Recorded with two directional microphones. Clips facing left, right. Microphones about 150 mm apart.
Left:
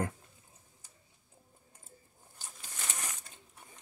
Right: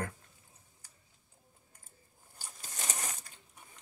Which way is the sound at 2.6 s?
40° right (ahead or behind).